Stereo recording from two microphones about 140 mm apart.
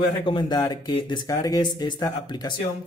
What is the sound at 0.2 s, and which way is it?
Speech, 35° left (ahead or behind).